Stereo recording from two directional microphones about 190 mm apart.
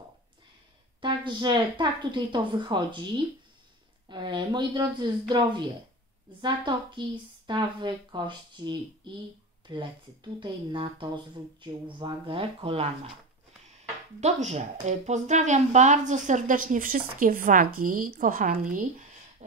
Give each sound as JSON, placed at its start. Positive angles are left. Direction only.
{"t": 1.0, "sound": "a woman's voice", "side_deg": -25}
{"t": 14.2, "sound": "a woman's voice", "side_deg": -35}